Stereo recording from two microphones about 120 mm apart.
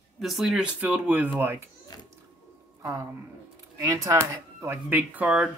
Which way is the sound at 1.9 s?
35° left (ahead or behind).